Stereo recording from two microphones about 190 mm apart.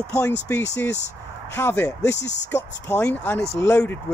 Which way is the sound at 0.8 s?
65° left (ahead or behind).